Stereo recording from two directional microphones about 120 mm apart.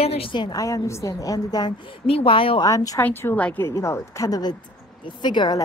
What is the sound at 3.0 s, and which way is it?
A woman's voice, 15° left (ahead or behind).